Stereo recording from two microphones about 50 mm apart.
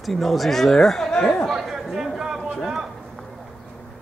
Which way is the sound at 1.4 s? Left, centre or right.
Centre.